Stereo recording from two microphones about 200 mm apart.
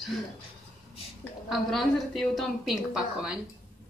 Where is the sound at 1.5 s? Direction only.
Centre (ahead or behind).